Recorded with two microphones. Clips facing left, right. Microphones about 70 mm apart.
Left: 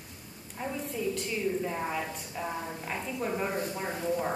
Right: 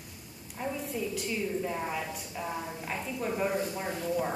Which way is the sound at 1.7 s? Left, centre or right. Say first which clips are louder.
Left 1 dB; centre.